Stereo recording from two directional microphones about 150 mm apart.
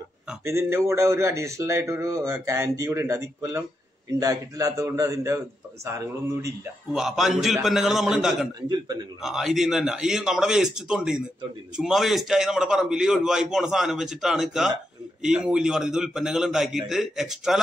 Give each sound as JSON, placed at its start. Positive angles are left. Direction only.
{"t": 0.4, "sound": "speech", "side_deg": -20}
{"t": 6.9, "sound": "a man's voice", "side_deg": 0}
{"t": 8.6, "sound": "speech", "side_deg": -25}
{"t": 9.2, "sound": "a man's voice", "side_deg": 0}